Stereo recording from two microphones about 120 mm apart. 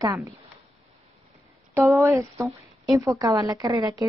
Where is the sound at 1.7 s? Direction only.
25° right (ahead or behind).